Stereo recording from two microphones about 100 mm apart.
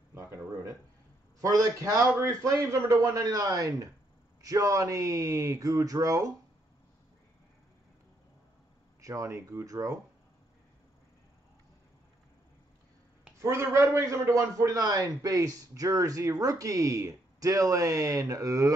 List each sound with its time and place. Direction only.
0.1 s a sound: 25° right (ahead or behind)
1.4 s a man's voice: 35° right (ahead or behind)
9.0 s a man's voice: 35° right (ahead or behind)
13.4 s a man's voice: 25° right (ahead or behind)